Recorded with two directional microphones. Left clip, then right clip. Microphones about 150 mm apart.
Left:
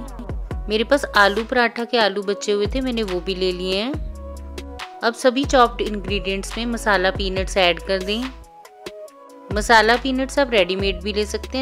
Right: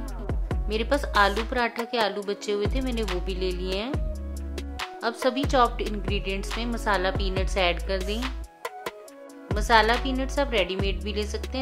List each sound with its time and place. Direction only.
0.7 s speech: 45° left (ahead or behind)
5.0 s speech: 40° left (ahead or behind)
9.5 s speech: 50° left (ahead or behind)